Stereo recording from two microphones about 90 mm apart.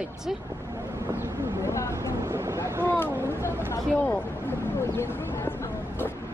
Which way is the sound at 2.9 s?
25° left (ahead or behind).